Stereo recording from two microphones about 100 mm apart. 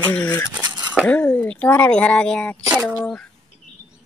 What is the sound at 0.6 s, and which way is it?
Cutlery, 45° right (ahead or behind).